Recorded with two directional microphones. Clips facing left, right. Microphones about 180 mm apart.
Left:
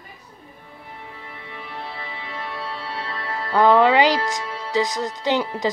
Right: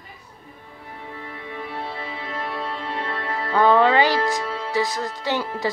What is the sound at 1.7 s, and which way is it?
Music, 15° right (ahead or behind).